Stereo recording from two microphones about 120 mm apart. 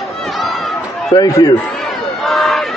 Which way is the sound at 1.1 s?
30° left (ahead or behind).